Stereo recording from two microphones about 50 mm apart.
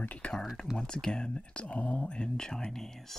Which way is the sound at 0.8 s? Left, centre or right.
Centre.